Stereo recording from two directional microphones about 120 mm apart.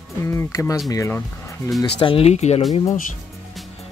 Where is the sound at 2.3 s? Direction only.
65° left (ahead or behind).